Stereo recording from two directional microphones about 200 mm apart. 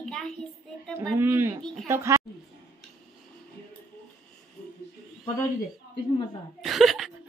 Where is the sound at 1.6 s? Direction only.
Centre (ahead or behind).